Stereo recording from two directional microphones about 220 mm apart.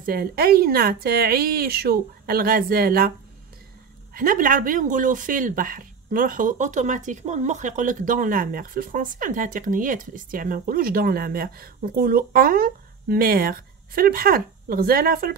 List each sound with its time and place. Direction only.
0.0 s speech: 40° right (ahead or behind)
4.1 s speech: 40° right (ahead or behind)